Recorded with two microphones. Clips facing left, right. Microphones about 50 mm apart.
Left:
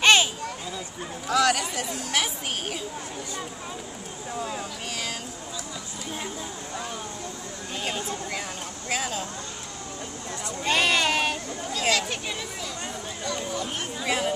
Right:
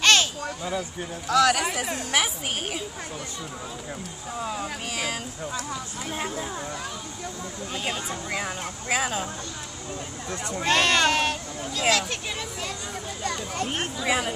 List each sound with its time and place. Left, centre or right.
0.0 s a sound: centre
1.2 s speech: centre
2.1 s speech: centre
4.4 s speech: centre
6.1 s speech: right
8.1 s speech: centre
10.7 s speech: centre
13.2 s speech: right
14.0 s speech: centre